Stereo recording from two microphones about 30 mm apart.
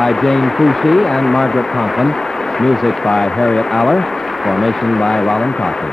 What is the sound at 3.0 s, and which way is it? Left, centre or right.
Speech, left.